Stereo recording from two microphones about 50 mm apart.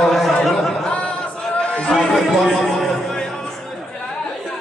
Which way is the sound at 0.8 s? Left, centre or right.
Left.